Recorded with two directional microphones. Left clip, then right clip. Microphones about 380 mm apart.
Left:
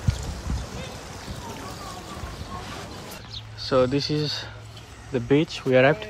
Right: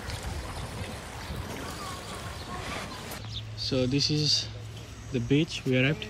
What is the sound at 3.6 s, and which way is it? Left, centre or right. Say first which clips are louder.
Speech: left 6 dB; centre.